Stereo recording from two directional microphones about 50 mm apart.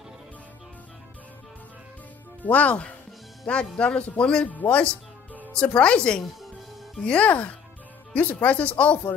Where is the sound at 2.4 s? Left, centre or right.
Left.